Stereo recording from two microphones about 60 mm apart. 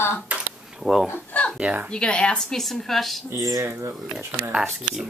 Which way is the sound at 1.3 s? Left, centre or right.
Left.